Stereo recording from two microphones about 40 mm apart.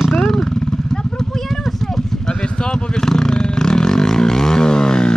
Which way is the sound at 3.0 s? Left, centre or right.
Centre.